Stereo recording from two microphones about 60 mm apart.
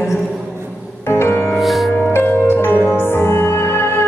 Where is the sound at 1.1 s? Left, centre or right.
Left.